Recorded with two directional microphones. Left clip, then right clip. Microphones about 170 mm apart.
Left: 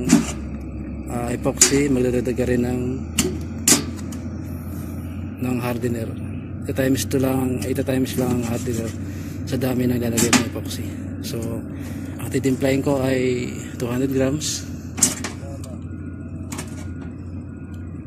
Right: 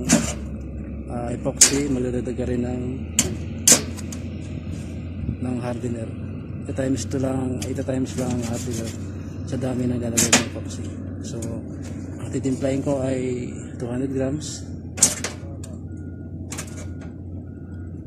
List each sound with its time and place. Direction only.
0.0 s a sound: 70° right (ahead or behind)
1.1 s a man's voice: centre (ahead or behind)
3.2 s tick-tock: 75° right (ahead or behind)
5.4 s a man's voice: 5° right (ahead or behind)
10.1 s speech: 70° right (ahead or behind)
12.3 s a man's voice: 5° right (ahead or behind)